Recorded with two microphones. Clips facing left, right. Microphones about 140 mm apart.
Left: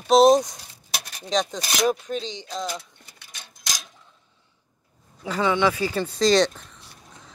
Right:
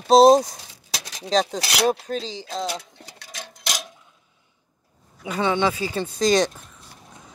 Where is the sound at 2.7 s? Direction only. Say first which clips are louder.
Right 2 dB; 90° right; by 3.9 s 65° right (ahead or behind).